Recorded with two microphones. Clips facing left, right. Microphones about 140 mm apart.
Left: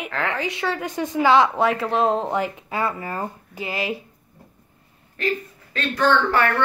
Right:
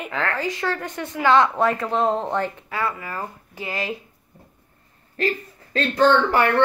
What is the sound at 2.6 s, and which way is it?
Speech, 25° left (ahead or behind).